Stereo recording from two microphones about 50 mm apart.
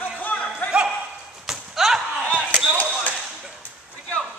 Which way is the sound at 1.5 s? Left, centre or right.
Centre.